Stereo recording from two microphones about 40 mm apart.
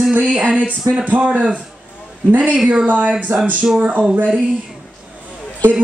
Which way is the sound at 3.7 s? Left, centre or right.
Right.